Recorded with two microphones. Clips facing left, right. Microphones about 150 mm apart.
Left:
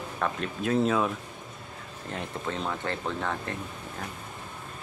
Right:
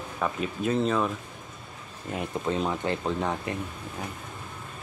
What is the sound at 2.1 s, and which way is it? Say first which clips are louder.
Speech: right 5 dB; 15° right (ahead or behind).